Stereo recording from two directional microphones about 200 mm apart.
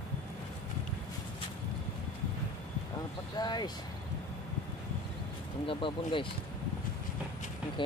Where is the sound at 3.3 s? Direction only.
20° left (ahead or behind).